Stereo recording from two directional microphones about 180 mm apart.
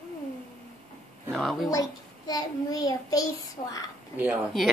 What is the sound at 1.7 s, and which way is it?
A child's voice, 20° left (ahead or behind).